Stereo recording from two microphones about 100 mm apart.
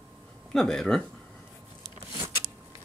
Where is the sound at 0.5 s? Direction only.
5° left (ahead or behind).